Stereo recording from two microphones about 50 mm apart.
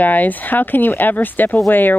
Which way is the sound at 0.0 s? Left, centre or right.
Left.